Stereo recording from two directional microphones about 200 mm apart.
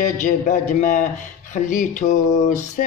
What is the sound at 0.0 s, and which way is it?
Speech, 40° left (ahead or behind).